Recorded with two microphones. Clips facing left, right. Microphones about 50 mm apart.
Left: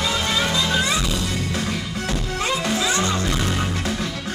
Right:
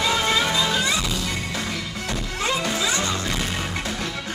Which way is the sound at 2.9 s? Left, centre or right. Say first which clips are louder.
Left 3 dB; left.